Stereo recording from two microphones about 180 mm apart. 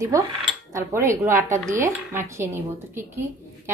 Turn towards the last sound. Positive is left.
turn(degrees=-15)  # may be behind; listen again after turning